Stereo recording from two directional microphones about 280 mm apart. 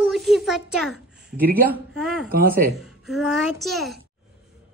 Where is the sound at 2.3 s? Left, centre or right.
Right.